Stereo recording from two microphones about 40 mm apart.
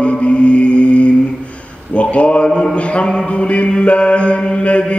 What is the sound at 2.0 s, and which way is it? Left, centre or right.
Speech, left.